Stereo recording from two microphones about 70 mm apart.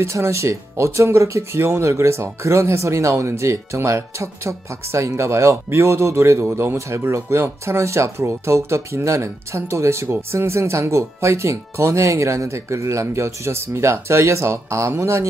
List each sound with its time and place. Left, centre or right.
0.0 s speech: right